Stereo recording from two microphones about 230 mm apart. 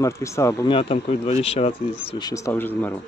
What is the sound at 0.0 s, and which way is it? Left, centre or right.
Speech, centre.